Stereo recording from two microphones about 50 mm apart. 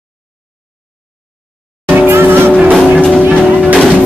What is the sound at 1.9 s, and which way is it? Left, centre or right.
Music, right.